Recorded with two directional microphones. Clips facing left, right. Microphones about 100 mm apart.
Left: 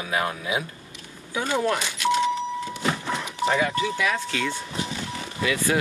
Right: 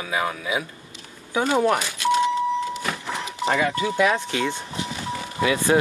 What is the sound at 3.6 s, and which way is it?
Speech, 30° right (ahead or behind).